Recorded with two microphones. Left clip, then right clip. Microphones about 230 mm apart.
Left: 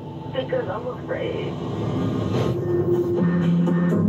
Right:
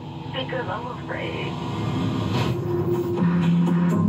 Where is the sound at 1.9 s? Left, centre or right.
Right.